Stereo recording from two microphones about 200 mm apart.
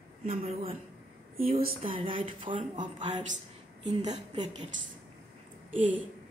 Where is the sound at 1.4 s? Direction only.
45° right (ahead or behind).